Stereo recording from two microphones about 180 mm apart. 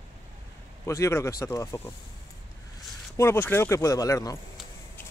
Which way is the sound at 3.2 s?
15° left (ahead or behind).